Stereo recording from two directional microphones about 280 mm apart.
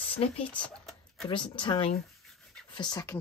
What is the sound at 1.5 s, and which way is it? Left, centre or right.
Speech, centre.